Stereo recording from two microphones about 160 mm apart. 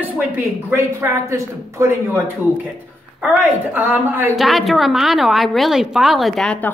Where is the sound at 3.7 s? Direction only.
10° right (ahead or behind).